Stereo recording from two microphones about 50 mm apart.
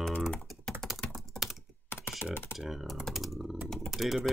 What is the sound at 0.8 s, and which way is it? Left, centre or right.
Typing, centre.